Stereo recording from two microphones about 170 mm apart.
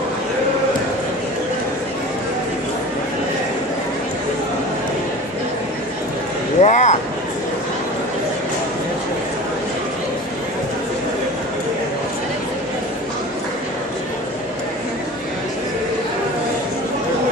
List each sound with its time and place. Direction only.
6.6 s vehicle: 45° left (ahead or behind)